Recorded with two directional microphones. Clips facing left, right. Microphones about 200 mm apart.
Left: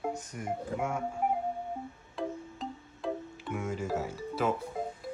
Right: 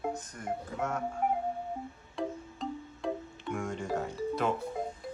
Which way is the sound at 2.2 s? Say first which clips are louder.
Right 1 dB; centre (ahead or behind).